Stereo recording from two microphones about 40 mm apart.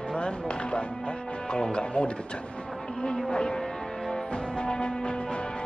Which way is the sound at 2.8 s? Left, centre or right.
Centre.